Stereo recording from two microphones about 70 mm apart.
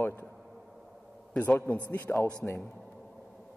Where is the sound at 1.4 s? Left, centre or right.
Left.